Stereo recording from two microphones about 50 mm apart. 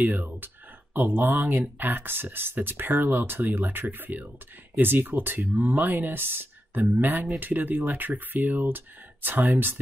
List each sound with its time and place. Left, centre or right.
0.0 s speech: right